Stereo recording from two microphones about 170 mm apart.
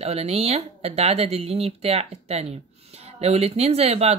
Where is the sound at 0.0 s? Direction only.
35° right (ahead or behind).